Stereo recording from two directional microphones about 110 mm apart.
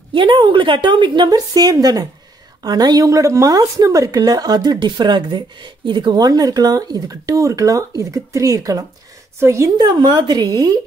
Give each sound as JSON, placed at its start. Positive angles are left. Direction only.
{"t": 0.1, "sound": "a woman's voice", "side_deg": -45}
{"t": 9.8, "sound": "speech", "side_deg": -40}